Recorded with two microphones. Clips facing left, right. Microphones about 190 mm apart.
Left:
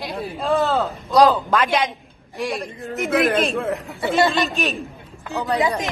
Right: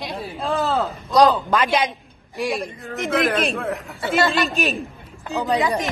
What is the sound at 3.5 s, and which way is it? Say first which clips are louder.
Speech: left 3 dB; 20° left (ahead or behind).